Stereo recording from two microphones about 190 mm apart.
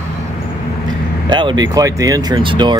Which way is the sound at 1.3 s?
20° right (ahead or behind).